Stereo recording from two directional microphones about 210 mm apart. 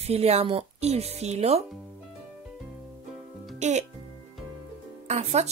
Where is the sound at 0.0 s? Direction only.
30° right (ahead or behind).